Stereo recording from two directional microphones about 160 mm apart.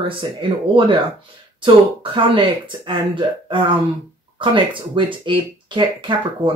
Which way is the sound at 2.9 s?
30° right (ahead or behind).